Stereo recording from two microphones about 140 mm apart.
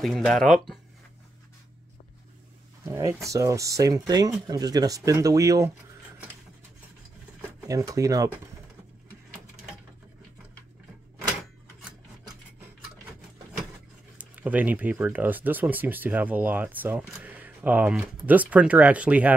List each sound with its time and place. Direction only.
0.0 s speech: centre (ahead or behind)
2.8 s speech: 20° right (ahead or behind)
7.6 s speech: 25° right (ahead or behind)
14.1 s speech: 10° right (ahead or behind)
17.1 s camera: 10° right (ahead or behind)
17.9 s speech: 10° right (ahead or behind)